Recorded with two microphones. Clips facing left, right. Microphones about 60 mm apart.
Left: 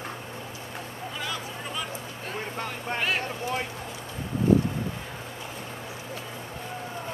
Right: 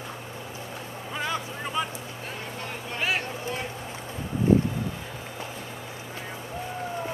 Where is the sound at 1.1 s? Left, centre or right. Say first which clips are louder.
Right 5 dB; right.